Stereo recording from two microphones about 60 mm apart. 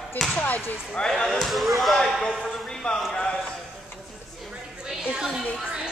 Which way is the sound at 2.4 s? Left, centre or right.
Centre.